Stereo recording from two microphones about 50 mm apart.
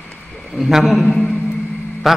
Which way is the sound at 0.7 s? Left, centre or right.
Centre.